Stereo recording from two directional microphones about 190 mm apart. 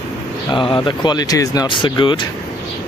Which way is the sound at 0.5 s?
25° left (ahead or behind).